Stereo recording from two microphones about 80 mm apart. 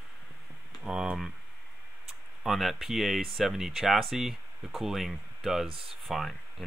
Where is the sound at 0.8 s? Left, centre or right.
Centre.